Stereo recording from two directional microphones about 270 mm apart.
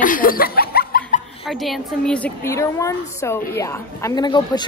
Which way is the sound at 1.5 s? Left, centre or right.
Centre.